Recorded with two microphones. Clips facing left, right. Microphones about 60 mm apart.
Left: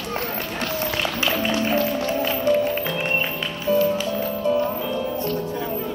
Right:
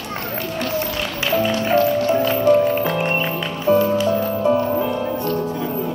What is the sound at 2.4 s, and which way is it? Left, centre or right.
Music, right.